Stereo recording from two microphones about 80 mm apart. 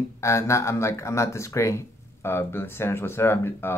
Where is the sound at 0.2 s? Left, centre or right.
Left.